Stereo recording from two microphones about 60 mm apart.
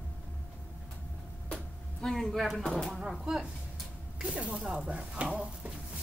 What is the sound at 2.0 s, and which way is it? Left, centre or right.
Speech, centre.